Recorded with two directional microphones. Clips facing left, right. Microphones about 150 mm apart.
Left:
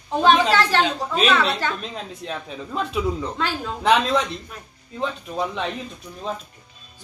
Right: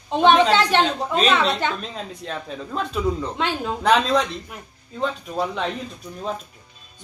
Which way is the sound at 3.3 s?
20° right (ahead or behind).